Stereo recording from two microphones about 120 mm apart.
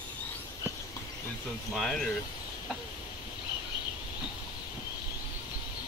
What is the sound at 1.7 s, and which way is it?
Speech, centre (ahead or behind).